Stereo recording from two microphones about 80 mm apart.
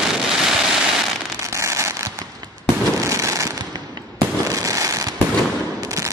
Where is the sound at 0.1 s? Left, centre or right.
Centre.